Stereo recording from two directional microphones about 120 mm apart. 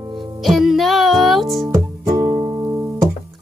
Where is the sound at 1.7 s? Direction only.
25° right (ahead or behind).